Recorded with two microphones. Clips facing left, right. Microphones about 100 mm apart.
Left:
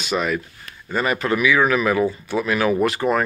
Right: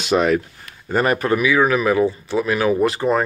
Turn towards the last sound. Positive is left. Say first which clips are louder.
# right 2 dB
turn(degrees=-30)  # may be behind; listen again after turning